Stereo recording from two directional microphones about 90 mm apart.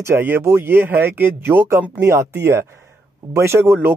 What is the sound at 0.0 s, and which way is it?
Speech, 25° right (ahead or behind).